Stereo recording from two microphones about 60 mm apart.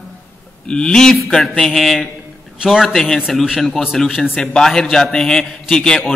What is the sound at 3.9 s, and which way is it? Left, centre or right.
A man's voice, centre.